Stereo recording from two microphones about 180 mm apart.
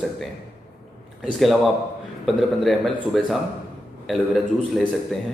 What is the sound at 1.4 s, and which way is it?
A man's voice, centre (ahead or behind).